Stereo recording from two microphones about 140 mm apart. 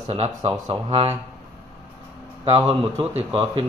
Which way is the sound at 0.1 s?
45° right (ahead or behind).